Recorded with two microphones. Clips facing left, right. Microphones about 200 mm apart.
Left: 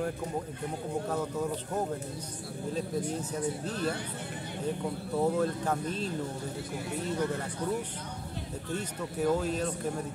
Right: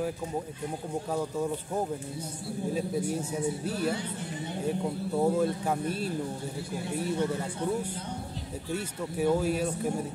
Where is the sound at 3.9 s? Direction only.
55° left (ahead or behind).